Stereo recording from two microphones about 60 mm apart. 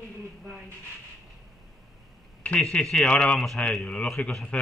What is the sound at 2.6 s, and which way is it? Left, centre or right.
A man's voice, centre.